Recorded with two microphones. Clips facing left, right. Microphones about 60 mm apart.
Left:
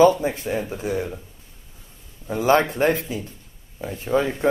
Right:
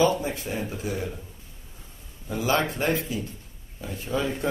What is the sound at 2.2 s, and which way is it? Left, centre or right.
Speech, left.